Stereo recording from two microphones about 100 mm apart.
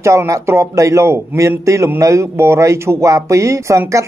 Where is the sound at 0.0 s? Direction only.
30° right (ahead or behind).